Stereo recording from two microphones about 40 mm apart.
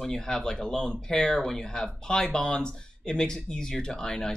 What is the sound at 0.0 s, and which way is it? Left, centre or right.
Speech, centre.